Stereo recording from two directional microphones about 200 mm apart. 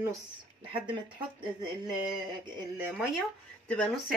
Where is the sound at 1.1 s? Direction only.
20° right (ahead or behind).